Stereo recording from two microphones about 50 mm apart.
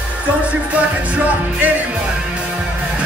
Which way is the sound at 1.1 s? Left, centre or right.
Right.